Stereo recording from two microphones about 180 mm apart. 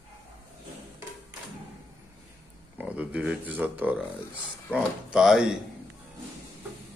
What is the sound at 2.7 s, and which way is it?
Speech, 5° right (ahead or behind).